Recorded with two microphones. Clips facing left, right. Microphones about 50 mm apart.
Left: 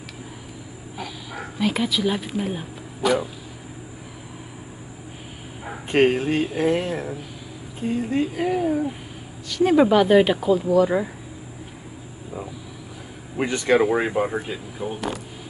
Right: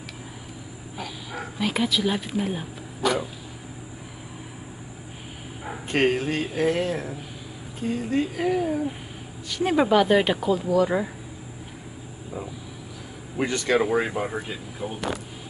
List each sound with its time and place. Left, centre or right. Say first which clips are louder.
0.9 s speech: left 1 dB; centre
5.9 s speech: left 4 dB; centre
8.4 s speech: left 2 dB; centre
9.5 s speech: left 6 dB; centre
9.8 s speech: left 3 dB; centre
13.4 s speech: left 3 dB; centre